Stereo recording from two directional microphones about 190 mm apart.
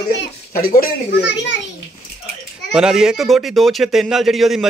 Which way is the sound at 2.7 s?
5° right (ahead or behind).